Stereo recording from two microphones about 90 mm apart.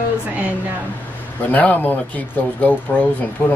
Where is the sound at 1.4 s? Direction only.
20° left (ahead or behind).